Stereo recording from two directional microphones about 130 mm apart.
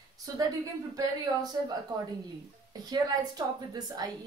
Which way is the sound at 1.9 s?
30° right (ahead or behind).